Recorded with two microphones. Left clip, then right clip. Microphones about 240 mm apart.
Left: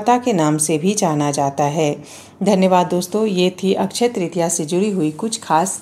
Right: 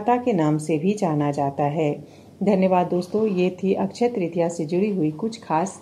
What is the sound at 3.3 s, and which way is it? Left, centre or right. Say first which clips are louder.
Speech: left 5 dB; left.